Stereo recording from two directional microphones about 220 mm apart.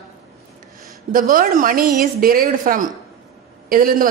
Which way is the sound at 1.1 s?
40° right (ahead or behind).